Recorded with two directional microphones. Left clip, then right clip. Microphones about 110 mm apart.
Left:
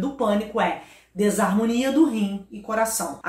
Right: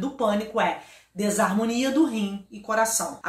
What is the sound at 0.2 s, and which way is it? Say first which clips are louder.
A woman's voice: left 1 dB; 20° right (ahead or behind).